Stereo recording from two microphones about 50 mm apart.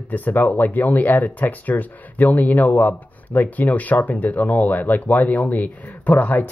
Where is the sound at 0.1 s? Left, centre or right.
Left.